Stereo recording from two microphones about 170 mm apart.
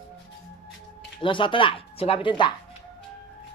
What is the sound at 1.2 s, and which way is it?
Speech, 30° left (ahead or behind).